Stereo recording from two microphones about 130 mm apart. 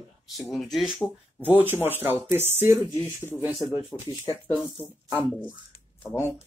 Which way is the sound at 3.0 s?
15° left (ahead or behind).